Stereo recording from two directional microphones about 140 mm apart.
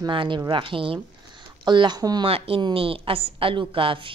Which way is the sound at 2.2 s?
45° right (ahead or behind).